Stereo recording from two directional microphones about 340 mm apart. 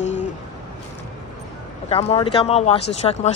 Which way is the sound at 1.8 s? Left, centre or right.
Centre.